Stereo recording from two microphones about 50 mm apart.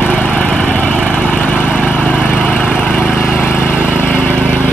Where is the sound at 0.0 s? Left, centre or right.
Left.